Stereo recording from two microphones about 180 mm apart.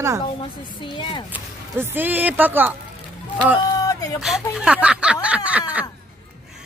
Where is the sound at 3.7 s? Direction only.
20° left (ahead or behind).